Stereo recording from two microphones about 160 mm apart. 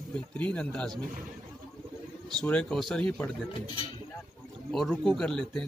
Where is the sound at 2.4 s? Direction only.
5° left (ahead or behind).